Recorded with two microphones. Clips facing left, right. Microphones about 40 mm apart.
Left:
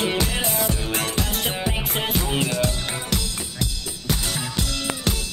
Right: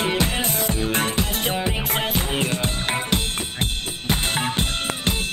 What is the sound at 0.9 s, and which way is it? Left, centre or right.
Music, right.